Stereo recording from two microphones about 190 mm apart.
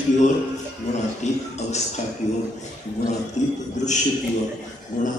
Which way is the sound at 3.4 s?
40° left (ahead or behind).